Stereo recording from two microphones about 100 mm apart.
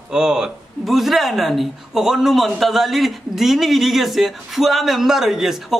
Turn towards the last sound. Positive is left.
turn(degrees=-5)  # may be behind; listen again after turning